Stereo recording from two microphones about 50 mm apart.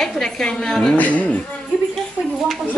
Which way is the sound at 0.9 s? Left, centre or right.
Left.